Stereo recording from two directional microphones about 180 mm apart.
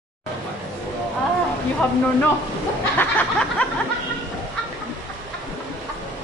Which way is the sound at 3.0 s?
10° left (ahead or behind).